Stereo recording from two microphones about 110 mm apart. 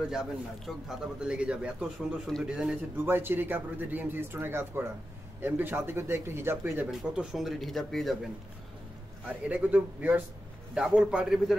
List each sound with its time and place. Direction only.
0.1 s speech: 5° right (ahead or behind)
3.0 s a man's voice: 20° right (ahead or behind)
6.9 s speech: 5° right (ahead or behind)
9.5 s speech: 15° right (ahead or behind)